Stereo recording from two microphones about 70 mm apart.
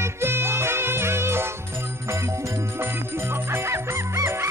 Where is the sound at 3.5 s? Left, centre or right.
Right.